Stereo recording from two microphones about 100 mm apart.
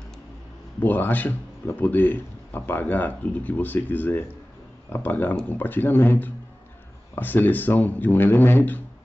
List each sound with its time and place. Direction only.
0.7 s speech: 20° left (ahead or behind)